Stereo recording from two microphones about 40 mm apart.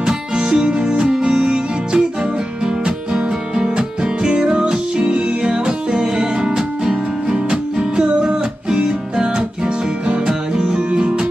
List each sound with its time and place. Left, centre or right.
0.0 s music: centre
10.8 s music: right